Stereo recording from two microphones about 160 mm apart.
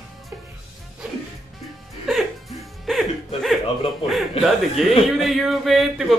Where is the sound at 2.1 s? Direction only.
Centre (ahead or behind).